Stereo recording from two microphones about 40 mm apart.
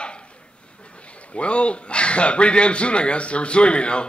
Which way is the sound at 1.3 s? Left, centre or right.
Left.